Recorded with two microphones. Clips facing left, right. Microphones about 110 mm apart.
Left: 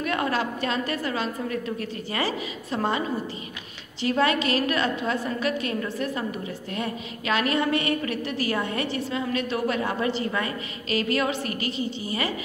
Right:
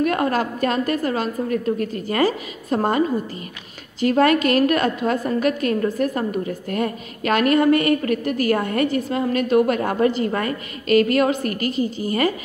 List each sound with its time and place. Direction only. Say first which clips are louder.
0.0 s a woman's voice: right 6 dB; 45° right (ahead or behind)
4.0 s a woman's voice: right 6 dB; 50° right (ahead or behind)